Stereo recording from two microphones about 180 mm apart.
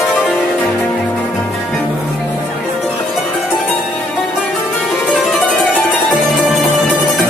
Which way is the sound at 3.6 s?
5° left (ahead or behind).